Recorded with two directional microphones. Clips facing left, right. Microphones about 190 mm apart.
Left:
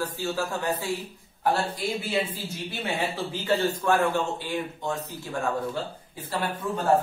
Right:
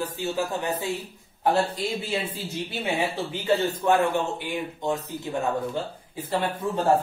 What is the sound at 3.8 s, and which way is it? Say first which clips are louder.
A man's voice: right 2 dB; 20° right (ahead or behind).